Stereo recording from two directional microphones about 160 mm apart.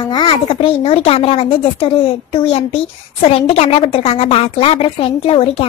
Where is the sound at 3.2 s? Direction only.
40° left (ahead or behind).